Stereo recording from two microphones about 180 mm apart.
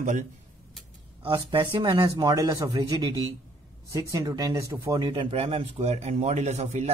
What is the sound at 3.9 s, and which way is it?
Speech, 15° right (ahead or behind).